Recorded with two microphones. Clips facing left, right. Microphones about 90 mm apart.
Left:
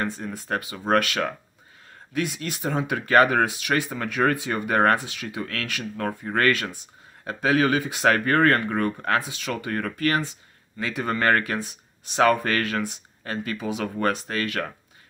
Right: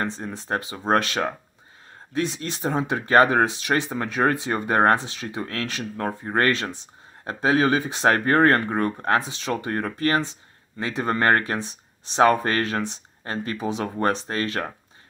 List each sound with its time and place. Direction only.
0.0 s speech: 25° right (ahead or behind)